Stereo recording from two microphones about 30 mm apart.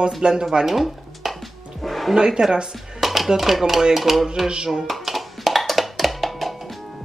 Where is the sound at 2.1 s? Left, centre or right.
Right.